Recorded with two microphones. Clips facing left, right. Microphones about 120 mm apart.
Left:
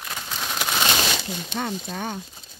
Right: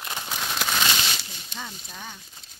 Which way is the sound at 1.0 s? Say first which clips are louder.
Left 7 dB; 90° left.